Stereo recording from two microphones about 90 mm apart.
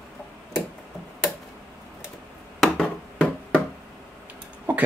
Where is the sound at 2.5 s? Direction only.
5° left (ahead or behind).